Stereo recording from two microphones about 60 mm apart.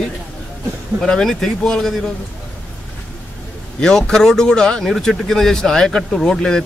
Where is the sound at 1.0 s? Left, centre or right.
Centre.